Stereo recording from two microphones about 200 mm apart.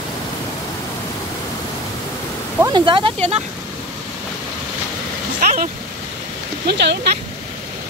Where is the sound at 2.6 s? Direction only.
20° right (ahead or behind).